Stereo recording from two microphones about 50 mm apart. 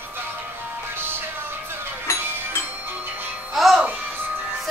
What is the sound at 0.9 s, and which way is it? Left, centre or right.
Music, right.